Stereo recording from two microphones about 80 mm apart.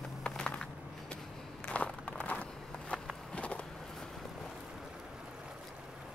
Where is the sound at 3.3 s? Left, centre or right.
Centre.